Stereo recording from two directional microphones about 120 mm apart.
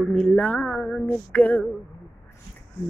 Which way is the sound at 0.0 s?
5° left (ahead or behind).